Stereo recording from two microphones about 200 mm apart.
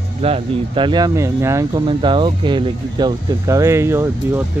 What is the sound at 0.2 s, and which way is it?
Speech, 25° right (ahead or behind).